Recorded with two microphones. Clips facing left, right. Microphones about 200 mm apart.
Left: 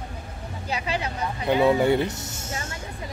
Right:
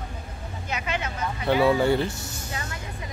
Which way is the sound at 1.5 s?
20° left (ahead or behind).